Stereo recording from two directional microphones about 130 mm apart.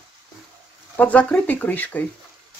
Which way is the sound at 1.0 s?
10° left (ahead or behind).